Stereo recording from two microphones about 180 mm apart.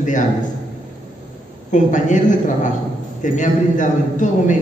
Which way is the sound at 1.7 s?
45° left (ahead or behind).